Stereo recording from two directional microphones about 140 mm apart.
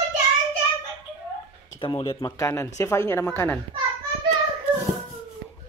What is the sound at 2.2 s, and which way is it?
Speech, 25° left (ahead or behind).